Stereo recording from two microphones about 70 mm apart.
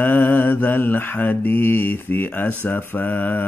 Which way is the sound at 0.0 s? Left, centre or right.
Left.